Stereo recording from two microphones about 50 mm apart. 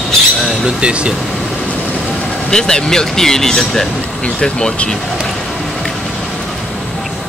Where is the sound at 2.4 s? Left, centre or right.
Centre.